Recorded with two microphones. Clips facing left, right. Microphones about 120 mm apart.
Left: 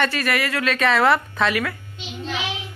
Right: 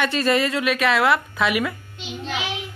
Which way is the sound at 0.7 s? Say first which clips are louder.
Left 3 dB; 5° right (ahead or behind).